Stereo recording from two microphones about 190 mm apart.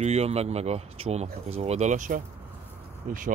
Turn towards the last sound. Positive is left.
turn(degrees=-45)  # may be behind; listen again after turning